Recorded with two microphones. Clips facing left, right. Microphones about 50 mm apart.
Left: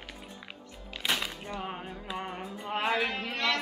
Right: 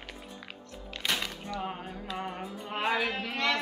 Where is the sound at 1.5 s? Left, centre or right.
Centre.